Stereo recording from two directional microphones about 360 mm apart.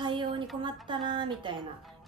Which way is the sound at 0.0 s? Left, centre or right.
Centre.